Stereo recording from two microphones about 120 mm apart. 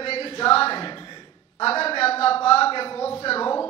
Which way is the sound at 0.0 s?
55° left (ahead or behind).